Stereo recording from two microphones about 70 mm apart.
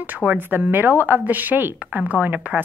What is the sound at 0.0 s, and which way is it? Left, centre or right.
A woman's voice, right.